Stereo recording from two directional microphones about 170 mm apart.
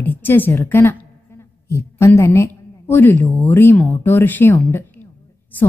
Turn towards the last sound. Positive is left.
turn(degrees=10)  # may be behind; listen again after turning